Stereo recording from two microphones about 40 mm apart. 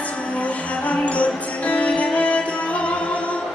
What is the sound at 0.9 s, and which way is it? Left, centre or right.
Music, left.